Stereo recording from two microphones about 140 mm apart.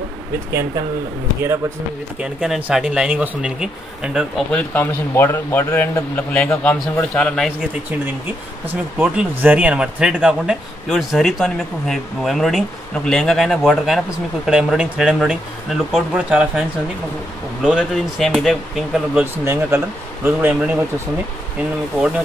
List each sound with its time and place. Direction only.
2.1 s speech: 5° right (ahead or behind)
4.5 s a man's voice: 10° left (ahead or behind)
8.6 s speech: 10° right (ahead or behind)
19.3 s speech: 15° right (ahead or behind)